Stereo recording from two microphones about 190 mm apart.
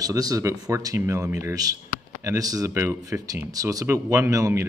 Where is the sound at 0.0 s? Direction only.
20° right (ahead or behind).